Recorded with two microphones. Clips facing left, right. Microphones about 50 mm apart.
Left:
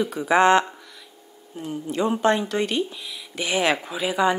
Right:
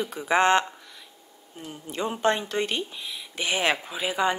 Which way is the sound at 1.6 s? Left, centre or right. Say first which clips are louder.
Left 6 dB; left.